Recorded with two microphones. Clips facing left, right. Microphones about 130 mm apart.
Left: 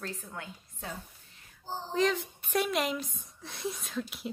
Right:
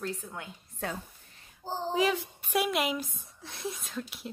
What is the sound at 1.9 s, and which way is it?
A woman's voice, 10° right (ahead or behind).